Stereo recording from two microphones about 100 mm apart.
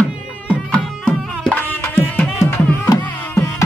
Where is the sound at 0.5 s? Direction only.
10° left (ahead or behind).